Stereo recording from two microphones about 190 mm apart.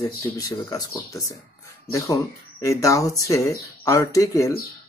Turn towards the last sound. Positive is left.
turn(degrees=15)  # may be behind; listen again after turning